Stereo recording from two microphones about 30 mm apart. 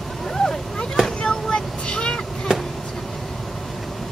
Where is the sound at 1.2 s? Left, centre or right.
Left.